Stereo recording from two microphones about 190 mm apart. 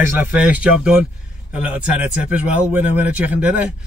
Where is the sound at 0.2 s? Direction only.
5° right (ahead or behind).